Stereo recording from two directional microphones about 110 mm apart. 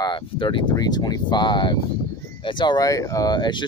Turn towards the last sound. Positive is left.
turn(degrees=45)  # may be behind; listen again after turning